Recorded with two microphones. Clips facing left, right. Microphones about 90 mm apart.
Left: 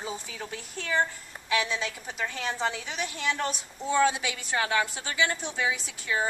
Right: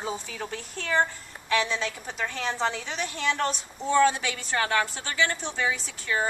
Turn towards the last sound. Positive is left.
turn(degrees=5)  # may be behind; listen again after turning